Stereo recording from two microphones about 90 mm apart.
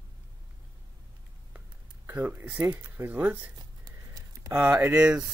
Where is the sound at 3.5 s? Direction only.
45° right (ahead or behind).